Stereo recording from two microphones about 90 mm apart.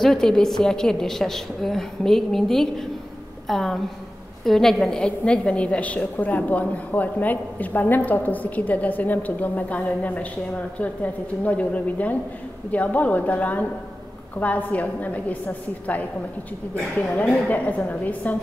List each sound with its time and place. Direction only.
0.0 s a woman's voice: 5° left (ahead or behind)
11.4 s a woman's voice: 15° left (ahead or behind)
17.5 s a woman's voice: 15° left (ahead or behind)